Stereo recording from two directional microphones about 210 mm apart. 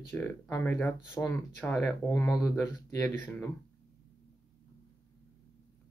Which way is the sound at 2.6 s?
10° left (ahead or behind).